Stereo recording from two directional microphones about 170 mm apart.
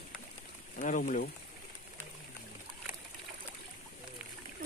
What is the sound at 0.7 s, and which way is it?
Speech, 50° left (ahead or behind).